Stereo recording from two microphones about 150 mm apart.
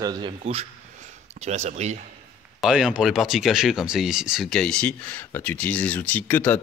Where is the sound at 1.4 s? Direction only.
50° right (ahead or behind).